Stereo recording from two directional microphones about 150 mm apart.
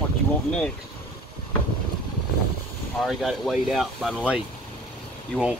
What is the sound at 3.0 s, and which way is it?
Speech, centre (ahead or behind).